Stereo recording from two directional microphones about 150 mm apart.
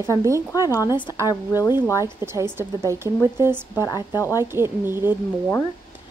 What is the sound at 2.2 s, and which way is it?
Speech, 15° right (ahead or behind).